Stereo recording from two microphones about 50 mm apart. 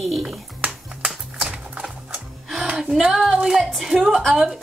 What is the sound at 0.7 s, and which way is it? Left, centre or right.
Music, centre.